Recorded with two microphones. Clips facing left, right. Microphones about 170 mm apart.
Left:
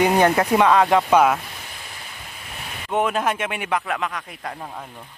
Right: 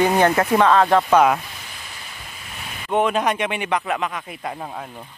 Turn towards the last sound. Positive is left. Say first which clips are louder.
# right 2 dB
turn(degrees=-5)  # may be behind; listen again after turning